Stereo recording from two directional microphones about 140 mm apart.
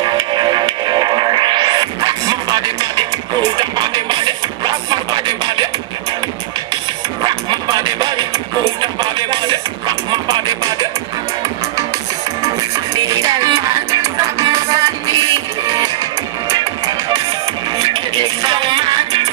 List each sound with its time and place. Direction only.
0.0 s music: 30° right (ahead or behind)
7.4 s music: 30° right (ahead or behind)
13.2 s music: 25° right (ahead or behind)
17.9 s music: 35° right (ahead or behind)